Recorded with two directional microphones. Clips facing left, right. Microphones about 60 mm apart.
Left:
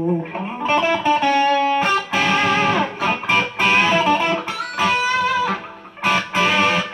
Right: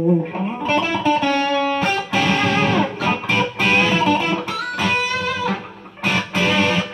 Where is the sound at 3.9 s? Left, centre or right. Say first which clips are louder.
Left 1 dB; left.